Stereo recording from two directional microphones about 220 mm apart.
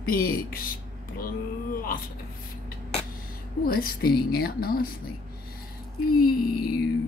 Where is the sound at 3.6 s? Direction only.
40° left (ahead or behind).